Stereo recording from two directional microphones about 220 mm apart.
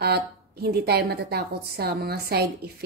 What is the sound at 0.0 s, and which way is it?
A woman's voice, 45° right (ahead or behind).